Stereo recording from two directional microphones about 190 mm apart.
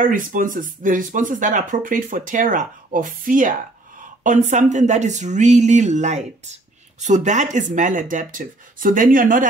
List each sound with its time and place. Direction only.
0.0 s speech: 45° right (ahead or behind)